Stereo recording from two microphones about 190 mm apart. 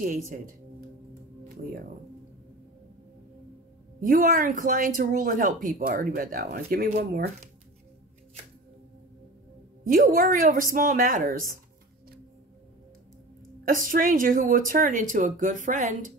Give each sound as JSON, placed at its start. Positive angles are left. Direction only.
{"t": 4.0, "sound": "speech", "side_deg": -45}
{"t": 9.8, "sound": "speech", "side_deg": -45}
{"t": 13.7, "sound": "speech", "side_deg": -45}